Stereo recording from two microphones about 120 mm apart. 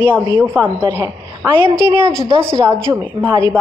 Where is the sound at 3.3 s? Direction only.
30° right (ahead or behind).